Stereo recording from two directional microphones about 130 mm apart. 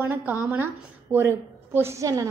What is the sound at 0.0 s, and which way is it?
A woman's voice, 15° right (ahead or behind).